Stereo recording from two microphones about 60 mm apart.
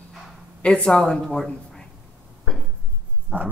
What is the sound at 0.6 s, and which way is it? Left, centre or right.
Speech, centre.